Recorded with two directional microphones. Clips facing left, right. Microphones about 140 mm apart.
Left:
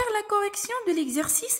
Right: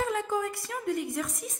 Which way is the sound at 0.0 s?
80° left.